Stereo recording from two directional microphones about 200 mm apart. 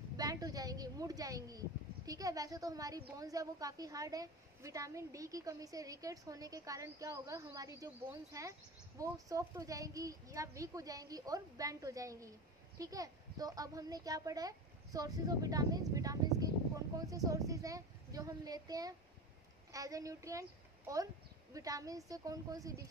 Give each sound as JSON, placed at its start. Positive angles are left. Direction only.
{"t": 0.2, "sound": "a woman's voice", "side_deg": -20}